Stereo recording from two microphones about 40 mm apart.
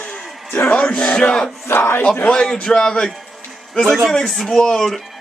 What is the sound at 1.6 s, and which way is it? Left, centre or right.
Speech, left.